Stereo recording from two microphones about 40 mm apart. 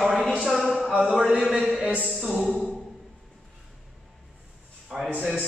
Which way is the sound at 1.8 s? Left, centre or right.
Right.